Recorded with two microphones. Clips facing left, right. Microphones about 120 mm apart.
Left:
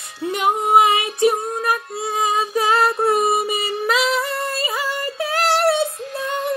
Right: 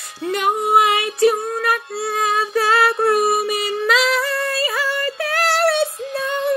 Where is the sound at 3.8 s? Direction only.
20° left (ahead or behind).